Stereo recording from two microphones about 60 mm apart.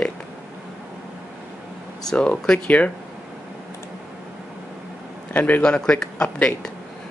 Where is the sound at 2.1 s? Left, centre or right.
Centre.